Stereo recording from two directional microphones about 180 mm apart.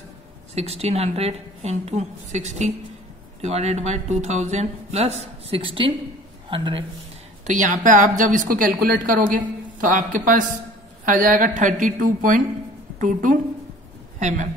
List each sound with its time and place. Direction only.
0.6 s a man's voice: 35° right (ahead or behind)
7.4 s a woman's voice: 45° right (ahead or behind)